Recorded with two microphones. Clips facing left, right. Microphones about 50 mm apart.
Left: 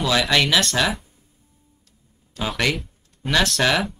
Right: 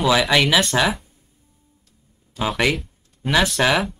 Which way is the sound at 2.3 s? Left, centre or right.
Centre.